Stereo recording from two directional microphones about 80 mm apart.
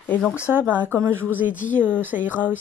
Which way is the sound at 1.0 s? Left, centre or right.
Right.